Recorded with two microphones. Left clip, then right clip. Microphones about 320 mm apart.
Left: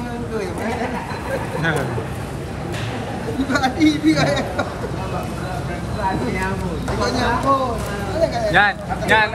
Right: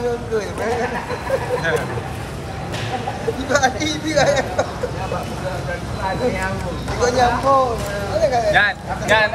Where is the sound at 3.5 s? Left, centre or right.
Centre.